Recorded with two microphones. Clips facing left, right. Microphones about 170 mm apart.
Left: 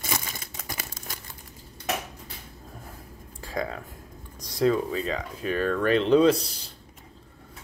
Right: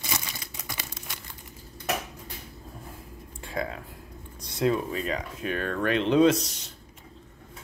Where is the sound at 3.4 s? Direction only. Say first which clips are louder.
Left 1 dB; 35° left (ahead or behind).